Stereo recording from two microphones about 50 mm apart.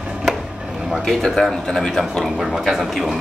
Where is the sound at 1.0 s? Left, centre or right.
Centre.